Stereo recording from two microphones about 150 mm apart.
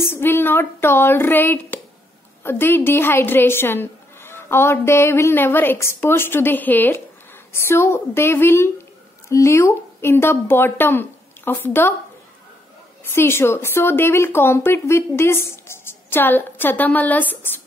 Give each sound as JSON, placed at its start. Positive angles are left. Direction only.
{"t": 0.0, "sound": "a woman's voice", "side_deg": 15}
{"t": 13.1, "sound": "a woman's voice", "side_deg": 15}